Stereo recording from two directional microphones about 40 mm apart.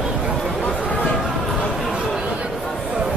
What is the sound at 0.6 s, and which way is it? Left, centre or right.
Chatter, left.